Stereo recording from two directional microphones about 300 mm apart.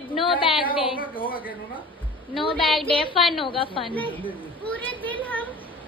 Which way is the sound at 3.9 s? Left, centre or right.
Centre.